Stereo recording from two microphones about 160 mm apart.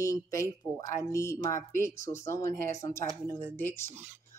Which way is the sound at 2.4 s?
60° right (ahead or behind).